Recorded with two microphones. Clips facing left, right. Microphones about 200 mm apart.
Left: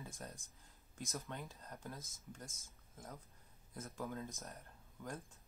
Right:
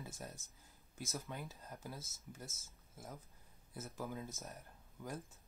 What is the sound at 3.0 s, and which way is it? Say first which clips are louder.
Speech: right 1 dB; 10° right (ahead or behind).